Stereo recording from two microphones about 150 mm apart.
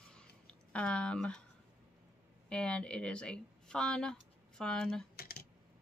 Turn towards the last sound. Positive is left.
turn(degrees=90)